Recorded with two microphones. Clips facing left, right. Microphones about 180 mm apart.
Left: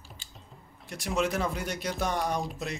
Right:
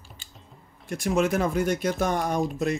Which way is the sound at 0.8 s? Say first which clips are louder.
Right 5 dB; 50° right (ahead or behind).